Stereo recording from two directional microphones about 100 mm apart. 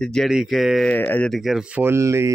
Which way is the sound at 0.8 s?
20° left (ahead or behind).